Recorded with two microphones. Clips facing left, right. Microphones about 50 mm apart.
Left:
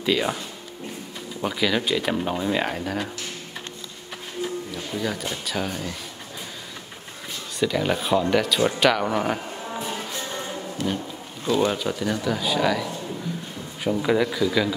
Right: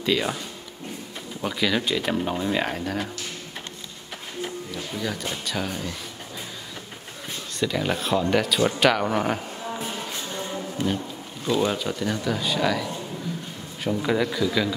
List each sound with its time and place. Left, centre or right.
0.0 s speech: centre
1.4 s speech: centre
4.9 s speech: centre
7.5 s speech: centre
10.8 s speech: centre
11.5 s speech: centre